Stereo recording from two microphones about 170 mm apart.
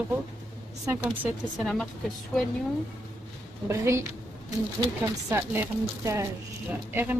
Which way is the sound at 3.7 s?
15° right (ahead or behind).